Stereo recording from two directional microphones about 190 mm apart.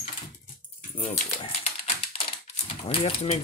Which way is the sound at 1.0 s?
45° left (ahead or behind).